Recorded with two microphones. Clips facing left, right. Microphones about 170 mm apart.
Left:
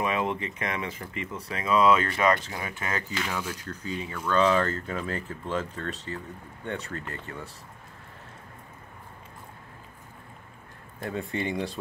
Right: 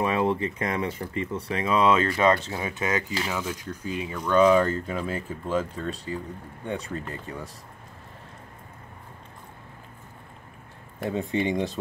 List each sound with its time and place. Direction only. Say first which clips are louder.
0.0 s speech: right 4 dB; 30° right (ahead or behind)
3.3 s speech: right 3 dB; 10° right (ahead or behind)
11.1 s speech: right 5 dB; 20° right (ahead or behind)